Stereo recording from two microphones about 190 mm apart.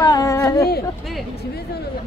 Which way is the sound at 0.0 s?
20° left (ahead or behind).